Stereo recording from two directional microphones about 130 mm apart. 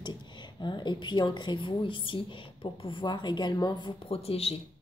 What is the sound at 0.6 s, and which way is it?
A woman's voice, 35° left (ahead or behind).